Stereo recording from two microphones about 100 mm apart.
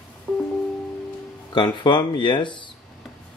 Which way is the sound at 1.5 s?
50° left (ahead or behind).